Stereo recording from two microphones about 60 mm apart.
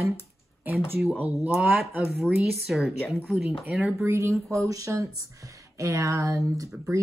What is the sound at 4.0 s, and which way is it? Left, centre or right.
Speech, right.